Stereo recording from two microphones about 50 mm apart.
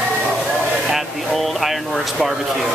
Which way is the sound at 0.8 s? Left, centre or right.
Centre.